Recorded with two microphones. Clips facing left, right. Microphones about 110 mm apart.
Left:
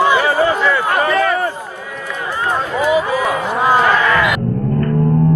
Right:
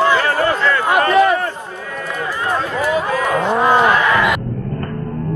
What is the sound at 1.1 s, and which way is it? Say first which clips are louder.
Run: right 5 dB; 15° right (ahead or behind).